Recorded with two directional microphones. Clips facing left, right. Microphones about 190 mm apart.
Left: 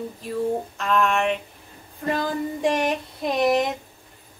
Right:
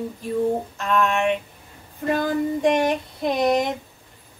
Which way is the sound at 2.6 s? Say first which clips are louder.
Right 1 dB; centre (ahead or behind).